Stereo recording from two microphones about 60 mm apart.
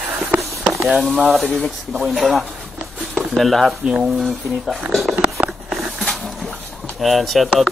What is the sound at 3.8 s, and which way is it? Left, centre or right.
Speech, centre.